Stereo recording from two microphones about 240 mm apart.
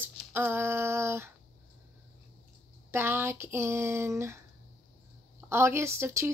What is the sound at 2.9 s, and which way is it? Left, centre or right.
Speech, centre.